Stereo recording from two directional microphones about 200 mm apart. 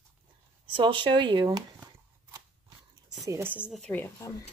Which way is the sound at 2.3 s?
15° right (ahead or behind).